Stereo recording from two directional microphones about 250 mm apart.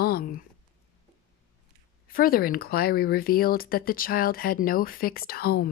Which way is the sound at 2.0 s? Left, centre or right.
Left.